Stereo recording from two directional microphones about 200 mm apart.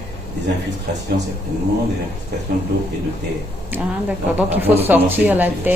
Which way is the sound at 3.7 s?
10° right (ahead or behind).